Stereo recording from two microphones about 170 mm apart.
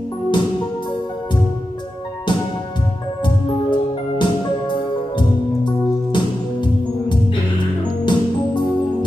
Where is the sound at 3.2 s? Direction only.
25° left (ahead or behind).